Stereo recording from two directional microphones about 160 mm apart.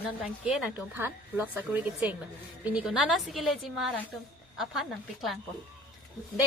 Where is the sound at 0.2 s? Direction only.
5° right (ahead or behind).